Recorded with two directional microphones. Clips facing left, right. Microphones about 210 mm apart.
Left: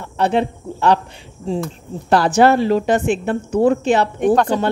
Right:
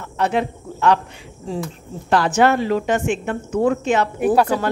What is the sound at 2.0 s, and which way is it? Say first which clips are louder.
Speech: left 3 dB; 35° left (ahead or behind).